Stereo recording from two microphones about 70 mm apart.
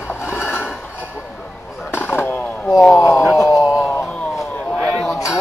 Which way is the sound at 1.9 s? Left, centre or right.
Left.